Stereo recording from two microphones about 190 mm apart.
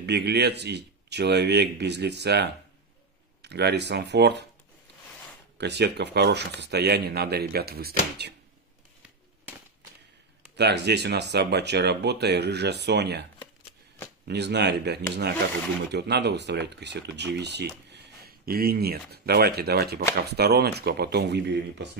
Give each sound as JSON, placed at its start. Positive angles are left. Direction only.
{"t": 0.0, "sound": "speech", "side_deg": -60}
{"t": 5.6, "sound": "speech", "side_deg": -60}
{"t": 10.5, "sound": "speech", "side_deg": -60}
{"t": 14.2, "sound": "speech", "side_deg": -60}
{"t": 17.9, "sound": "speech", "side_deg": -55}